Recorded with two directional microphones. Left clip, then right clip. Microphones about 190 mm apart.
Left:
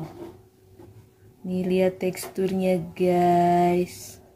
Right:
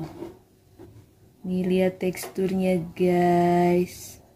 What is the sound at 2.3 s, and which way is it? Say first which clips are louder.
Speech: left 1 dB; centre (ahead or behind).